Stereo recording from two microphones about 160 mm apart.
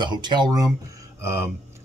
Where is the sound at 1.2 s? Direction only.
15° right (ahead or behind).